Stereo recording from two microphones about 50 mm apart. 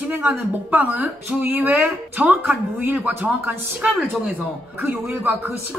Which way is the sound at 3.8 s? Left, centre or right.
Right.